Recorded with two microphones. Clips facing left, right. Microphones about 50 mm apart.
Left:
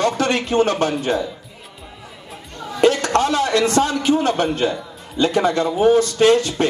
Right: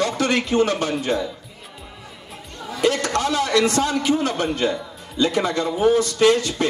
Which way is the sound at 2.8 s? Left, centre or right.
Left.